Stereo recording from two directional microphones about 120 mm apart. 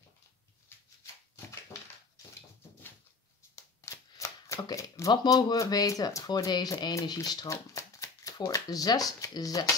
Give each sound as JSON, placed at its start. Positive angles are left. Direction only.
{"t": 3.5, "sound": "speech", "side_deg": 25}